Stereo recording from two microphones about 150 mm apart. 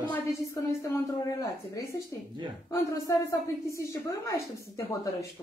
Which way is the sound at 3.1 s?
20° left (ahead or behind).